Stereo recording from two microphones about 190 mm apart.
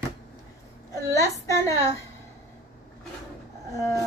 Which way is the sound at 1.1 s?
15° left (ahead or behind).